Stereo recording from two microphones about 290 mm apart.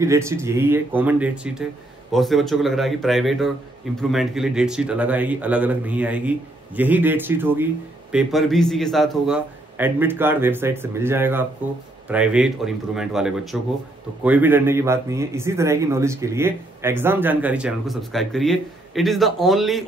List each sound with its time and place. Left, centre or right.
0.0 s a man's voice: centre